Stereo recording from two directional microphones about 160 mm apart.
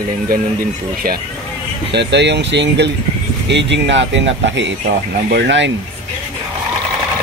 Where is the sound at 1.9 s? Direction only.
90° right.